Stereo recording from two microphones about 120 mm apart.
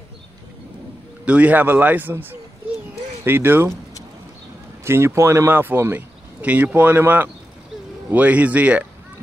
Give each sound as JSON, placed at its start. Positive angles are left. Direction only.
{"t": 1.2, "sound": "speech", "side_deg": -10}
{"t": 4.8, "sound": "speech", "side_deg": -20}